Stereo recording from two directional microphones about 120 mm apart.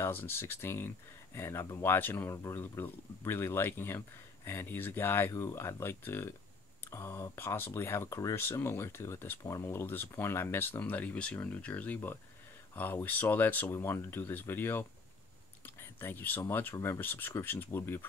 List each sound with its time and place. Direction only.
0.0 s speech: 20° left (ahead or behind)